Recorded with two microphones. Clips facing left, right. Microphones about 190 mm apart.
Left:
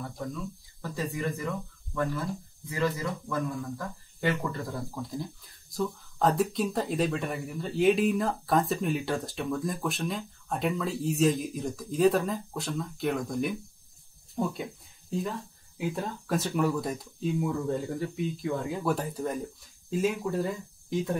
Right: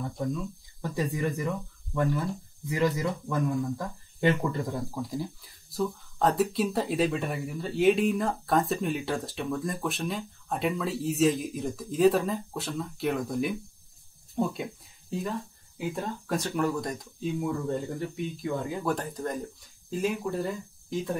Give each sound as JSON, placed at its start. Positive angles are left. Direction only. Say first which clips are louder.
{"t": 0.8, "sound": "speech", "louder": "right 3 dB", "side_deg": -15}
{"t": 2.7, "sound": "speech", "louder": "right 3 dB", "side_deg": -15}